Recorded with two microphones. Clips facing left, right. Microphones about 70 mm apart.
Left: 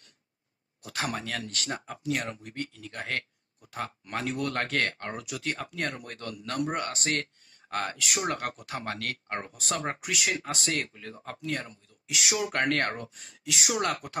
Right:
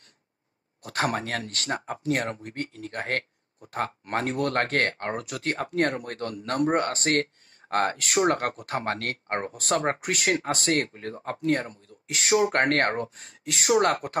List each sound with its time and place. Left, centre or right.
0.8 s speech: right